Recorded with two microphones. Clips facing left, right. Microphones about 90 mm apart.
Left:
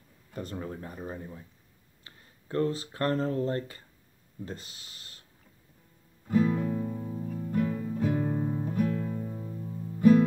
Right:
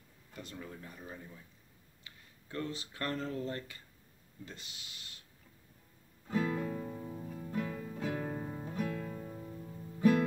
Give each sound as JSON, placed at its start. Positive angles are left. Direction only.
{"t": 0.3, "sound": "speech", "side_deg": 40}
{"t": 6.2, "sound": "music", "side_deg": 5}